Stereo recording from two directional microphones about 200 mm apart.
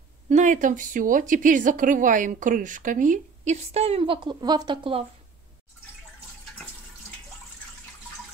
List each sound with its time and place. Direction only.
0.3 s a woman's voice: 40° right (ahead or behind)